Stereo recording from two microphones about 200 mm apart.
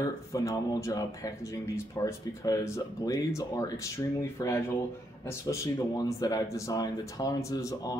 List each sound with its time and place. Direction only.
0.0 s speech: 15° left (ahead or behind)